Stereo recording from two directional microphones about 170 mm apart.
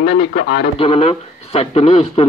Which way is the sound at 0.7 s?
35° left (ahead or behind).